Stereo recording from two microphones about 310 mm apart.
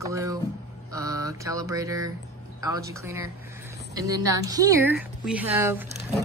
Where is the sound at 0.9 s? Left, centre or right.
Centre.